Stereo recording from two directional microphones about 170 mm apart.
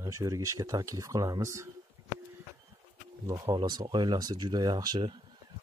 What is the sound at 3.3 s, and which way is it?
Speech, 20° right (ahead or behind).